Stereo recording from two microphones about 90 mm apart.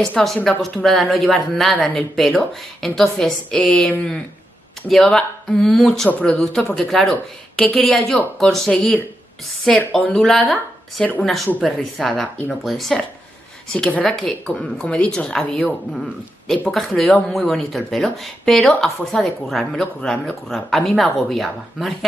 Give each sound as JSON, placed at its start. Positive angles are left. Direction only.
{"t": 0.0, "sound": "speech", "side_deg": 5}
{"t": 6.0, "sound": "speech", "side_deg": 20}
{"t": 6.4, "sound": "speech", "side_deg": 5}
{"t": 16.7, "sound": "speech", "side_deg": 5}